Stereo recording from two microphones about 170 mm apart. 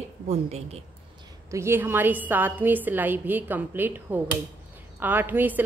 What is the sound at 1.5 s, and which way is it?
A woman's voice, 15° right (ahead or behind).